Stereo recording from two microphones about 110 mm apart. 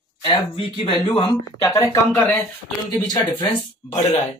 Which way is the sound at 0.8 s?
50° left (ahead or behind).